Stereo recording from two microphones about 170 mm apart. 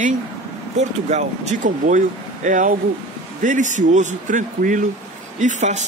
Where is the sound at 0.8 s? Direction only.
45° right (ahead or behind).